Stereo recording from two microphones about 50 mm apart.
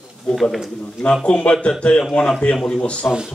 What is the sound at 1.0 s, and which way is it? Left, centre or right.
A man's voice, left.